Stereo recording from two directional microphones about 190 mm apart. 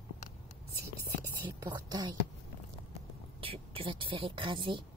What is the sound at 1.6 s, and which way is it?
Speech, 20° right (ahead or behind).